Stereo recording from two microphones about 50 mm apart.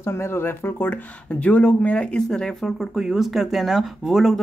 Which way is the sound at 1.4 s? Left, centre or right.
Left.